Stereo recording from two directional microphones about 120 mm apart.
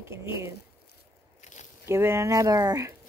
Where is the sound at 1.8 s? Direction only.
20° right (ahead or behind).